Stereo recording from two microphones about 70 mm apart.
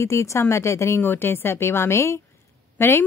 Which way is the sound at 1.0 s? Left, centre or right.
Left.